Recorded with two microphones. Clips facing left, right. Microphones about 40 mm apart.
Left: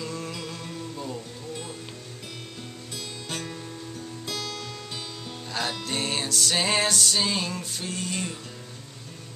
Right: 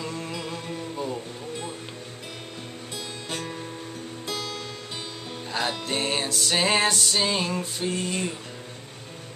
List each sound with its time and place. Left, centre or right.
0.0 s music: centre
3.3 s music: centre